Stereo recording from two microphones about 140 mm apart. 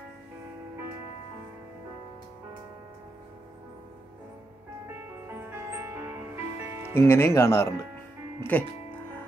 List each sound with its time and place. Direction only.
5.7 s music: 15° right (ahead or behind)
6.9 s speech: 15° left (ahead or behind)